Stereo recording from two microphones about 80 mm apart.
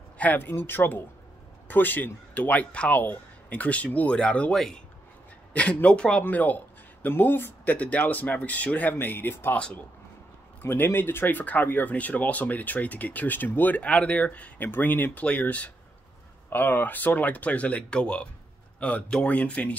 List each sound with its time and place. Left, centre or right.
0.2 s speech: left
10.6 s speech: left